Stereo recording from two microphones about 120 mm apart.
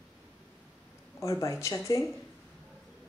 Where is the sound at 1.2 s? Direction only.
25° left (ahead or behind).